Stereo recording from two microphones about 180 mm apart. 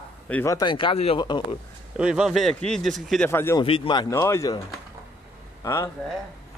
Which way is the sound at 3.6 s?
30° left (ahead or behind).